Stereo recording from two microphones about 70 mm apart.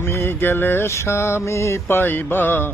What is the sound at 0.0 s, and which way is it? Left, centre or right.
Mantra, left.